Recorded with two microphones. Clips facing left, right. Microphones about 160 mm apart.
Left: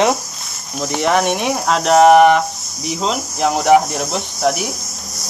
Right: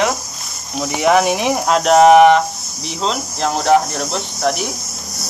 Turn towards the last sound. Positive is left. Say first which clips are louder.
# left 1 dB
turn(degrees=10)  # may be behind; listen again after turning